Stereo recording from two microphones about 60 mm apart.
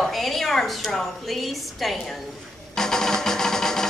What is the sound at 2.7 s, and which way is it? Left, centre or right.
Music, centre.